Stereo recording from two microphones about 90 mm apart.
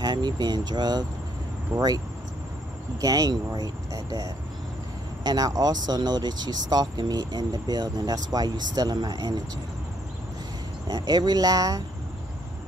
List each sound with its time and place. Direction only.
0.0 s speech: 55° right (ahead or behind)
1.7 s speech: 10° right (ahead or behind)
3.0 s speech: 45° right (ahead or behind)
10.9 s speech: 50° right (ahead or behind)